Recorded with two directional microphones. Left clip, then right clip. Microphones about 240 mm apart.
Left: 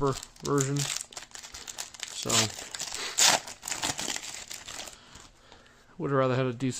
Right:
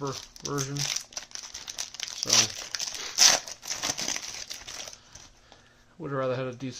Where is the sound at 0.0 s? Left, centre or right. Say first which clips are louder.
Left 5 dB; left.